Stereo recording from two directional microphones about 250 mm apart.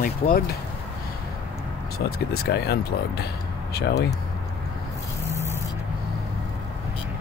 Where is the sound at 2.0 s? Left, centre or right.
Left.